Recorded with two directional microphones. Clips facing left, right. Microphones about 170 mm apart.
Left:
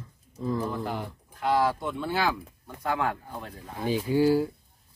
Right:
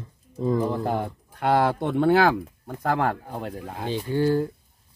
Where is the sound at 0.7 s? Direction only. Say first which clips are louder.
Right 6 dB; 45° right (ahead or behind).